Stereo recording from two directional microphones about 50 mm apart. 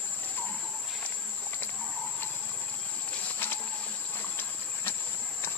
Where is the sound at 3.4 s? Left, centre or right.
Left.